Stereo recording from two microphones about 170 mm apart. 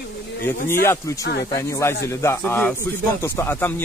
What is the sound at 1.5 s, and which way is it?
Speech, 20° left (ahead or behind).